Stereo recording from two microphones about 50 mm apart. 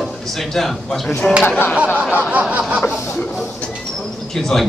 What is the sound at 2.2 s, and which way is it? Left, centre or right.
Snicker, right.